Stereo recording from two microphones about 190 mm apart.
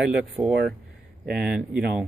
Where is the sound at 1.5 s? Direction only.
5° right (ahead or behind).